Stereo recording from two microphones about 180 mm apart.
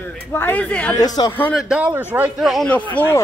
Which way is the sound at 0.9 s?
20° left (ahead or behind).